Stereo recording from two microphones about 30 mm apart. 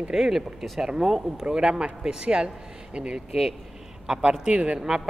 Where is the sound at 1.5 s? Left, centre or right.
Right.